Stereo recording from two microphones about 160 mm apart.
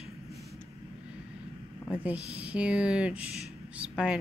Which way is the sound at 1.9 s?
10° right (ahead or behind).